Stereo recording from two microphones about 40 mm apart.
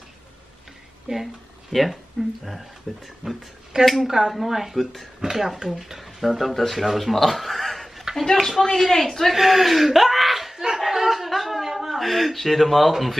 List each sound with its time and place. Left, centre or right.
1.0 s speech: centre
2.9 s speech: centre
3.2 s speech: right
3.8 s speech: centre
9.3 s speech: centre
10.9 s chuckle: centre